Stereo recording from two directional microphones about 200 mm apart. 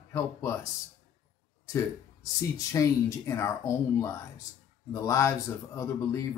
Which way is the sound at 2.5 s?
15° left (ahead or behind).